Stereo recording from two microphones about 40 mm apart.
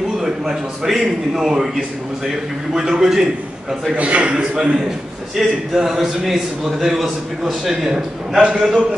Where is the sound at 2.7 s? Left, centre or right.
Centre.